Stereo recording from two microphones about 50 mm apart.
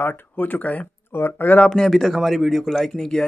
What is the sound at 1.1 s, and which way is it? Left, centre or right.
Speech, left.